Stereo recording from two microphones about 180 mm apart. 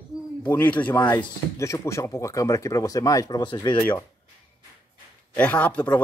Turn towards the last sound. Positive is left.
turn(degrees=10)  # may be behind; listen again after turning